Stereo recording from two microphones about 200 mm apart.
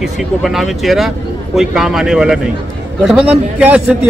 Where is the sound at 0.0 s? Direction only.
Centre (ahead or behind).